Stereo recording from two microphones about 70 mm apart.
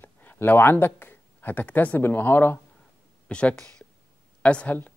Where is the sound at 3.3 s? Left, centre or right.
Centre.